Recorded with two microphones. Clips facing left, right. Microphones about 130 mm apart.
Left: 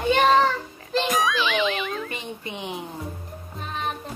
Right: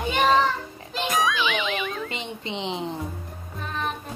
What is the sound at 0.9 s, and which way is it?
A child's voice, centre (ahead or behind).